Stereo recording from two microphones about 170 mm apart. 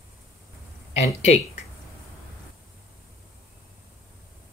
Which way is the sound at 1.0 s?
40° left (ahead or behind).